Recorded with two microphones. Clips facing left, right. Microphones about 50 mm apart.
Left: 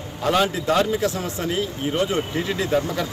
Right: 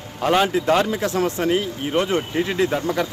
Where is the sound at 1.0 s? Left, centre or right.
Right.